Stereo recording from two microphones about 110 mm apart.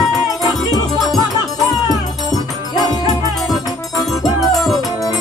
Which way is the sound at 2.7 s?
35° left (ahead or behind).